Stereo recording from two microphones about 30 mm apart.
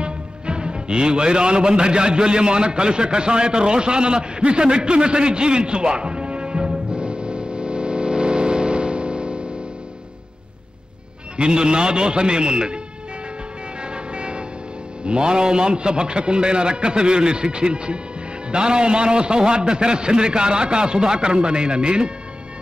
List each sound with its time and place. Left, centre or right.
0.0 s a man's voice: right
4.4 s music: right
11.3 s a man's voice: right
13.8 s vehicle: right
15.0 s a man's voice: right